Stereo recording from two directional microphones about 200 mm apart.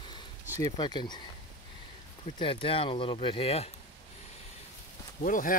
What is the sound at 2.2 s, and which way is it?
Speech, 25° left (ahead or behind).